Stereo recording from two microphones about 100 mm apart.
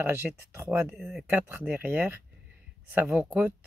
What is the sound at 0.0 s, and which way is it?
Speech, 25° right (ahead or behind).